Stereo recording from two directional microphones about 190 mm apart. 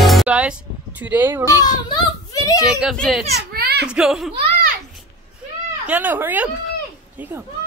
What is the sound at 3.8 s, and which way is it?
Speech, 5° right (ahead or behind).